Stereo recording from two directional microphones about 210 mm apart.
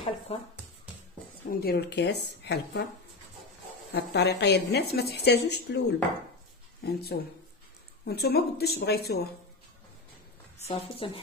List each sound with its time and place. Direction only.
0.3 s a woman's voice: 30° left (ahead or behind)
1.5 s a woman's voice: 45° left (ahead or behind)
3.9 s a woman's voice: 50° left (ahead or behind)
10.6 s a woman's voice: 25° left (ahead or behind)